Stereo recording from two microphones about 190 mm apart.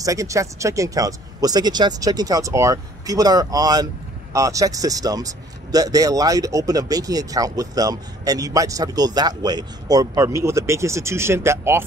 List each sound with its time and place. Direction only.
0.0 s speech: 15° right (ahead or behind)